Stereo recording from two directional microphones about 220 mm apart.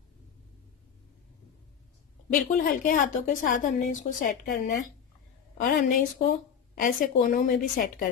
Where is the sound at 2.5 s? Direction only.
40° left (ahead or behind).